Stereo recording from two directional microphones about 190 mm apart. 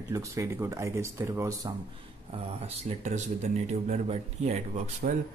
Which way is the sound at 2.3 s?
35° right (ahead or behind).